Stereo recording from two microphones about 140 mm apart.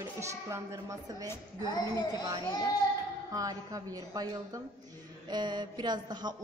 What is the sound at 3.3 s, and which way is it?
Speech, 25° right (ahead or behind).